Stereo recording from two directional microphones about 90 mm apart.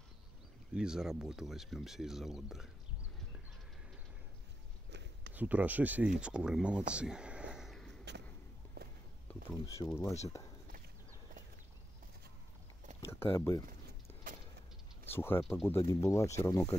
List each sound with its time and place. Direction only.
0.7 s speech: 5° right (ahead or behind)
5.3 s speech: 15° right (ahead or behind)
7.7 s walk: 5° left (ahead or behind)
9.5 s speech: 35° left (ahead or behind)
13.0 s speech: 30° left (ahead or behind)
15.0 s speech: 25° left (ahead or behind)